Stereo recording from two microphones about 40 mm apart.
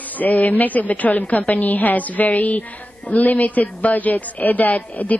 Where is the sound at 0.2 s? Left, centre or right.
Left.